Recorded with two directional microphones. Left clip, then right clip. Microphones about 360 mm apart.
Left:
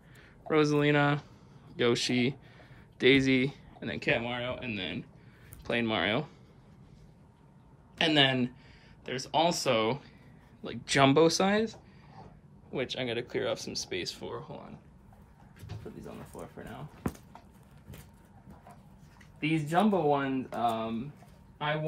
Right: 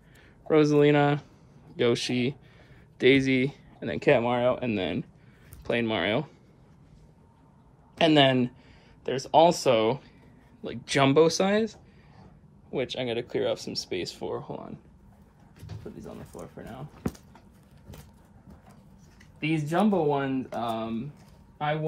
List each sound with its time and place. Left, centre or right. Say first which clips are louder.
0.5 s speech: right 5 dB; centre
8.0 s speech: right 5 dB; centre
19.4 s speech: right 2 dB; centre